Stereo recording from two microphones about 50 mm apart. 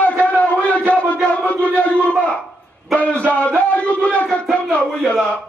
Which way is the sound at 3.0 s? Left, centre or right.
Left.